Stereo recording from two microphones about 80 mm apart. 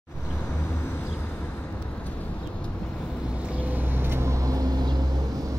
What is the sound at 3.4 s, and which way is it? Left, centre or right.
Vehicle, centre.